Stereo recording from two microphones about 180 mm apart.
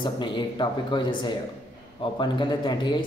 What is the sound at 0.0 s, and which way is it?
A man's voice, 25° left (ahead or behind).